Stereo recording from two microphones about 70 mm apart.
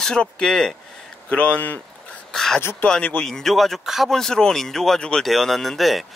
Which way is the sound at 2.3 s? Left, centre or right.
Centre.